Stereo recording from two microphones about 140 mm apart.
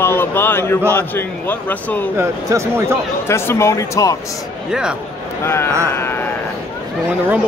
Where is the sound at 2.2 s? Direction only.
20° right (ahead or behind).